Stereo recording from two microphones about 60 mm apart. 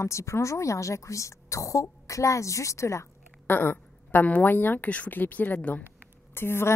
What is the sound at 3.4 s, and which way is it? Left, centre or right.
A woman's voice, left.